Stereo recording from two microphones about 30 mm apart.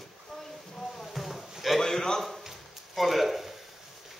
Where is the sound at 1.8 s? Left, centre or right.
Centre.